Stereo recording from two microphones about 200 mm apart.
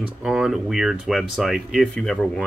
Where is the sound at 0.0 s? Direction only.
5° right (ahead or behind).